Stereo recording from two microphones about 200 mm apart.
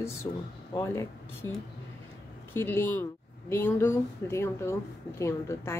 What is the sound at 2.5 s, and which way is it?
Speech, 10° left (ahead or behind).